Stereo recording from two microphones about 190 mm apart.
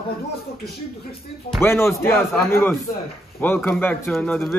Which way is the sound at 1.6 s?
15° left (ahead or behind).